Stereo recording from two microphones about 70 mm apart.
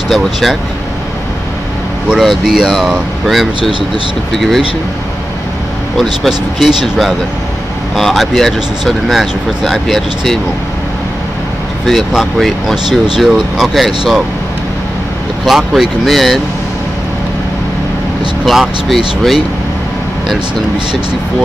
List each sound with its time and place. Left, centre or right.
0.1 s speech: centre
2.1 s speech: centre
6.2 s speech: centre
11.8 s speech: centre
15.4 s speech: centre
18.4 s speech: centre